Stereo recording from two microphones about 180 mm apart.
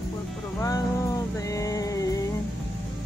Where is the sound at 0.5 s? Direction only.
20° left (ahead or behind).